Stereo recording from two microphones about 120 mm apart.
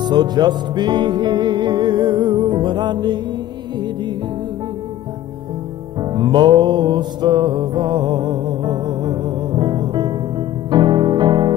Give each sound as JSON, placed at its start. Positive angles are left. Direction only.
{"t": 0.0, "sound": "music", "side_deg": -35}
{"t": 6.1, "sound": "music", "side_deg": -40}
{"t": 10.7, "sound": "piano", "side_deg": -40}